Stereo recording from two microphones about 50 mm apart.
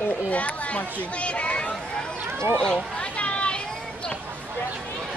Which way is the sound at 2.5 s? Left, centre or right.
Centre.